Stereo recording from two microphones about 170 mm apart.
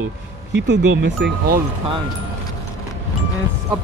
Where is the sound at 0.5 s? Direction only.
90° right.